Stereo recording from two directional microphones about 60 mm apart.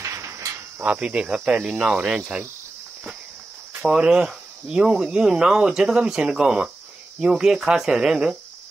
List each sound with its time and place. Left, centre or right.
0.0 s mechanisms: right
0.8 s speech: right
3.8 s speech: centre